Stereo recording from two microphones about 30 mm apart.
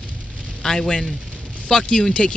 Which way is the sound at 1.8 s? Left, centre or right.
Left.